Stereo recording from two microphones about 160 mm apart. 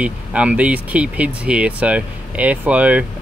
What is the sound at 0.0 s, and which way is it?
Speech, 10° right (ahead or behind).